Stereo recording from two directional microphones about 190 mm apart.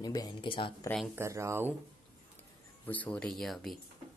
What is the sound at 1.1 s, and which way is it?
Speech, 15° right (ahead or behind).